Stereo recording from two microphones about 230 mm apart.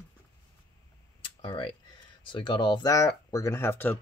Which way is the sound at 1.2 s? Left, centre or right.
Left.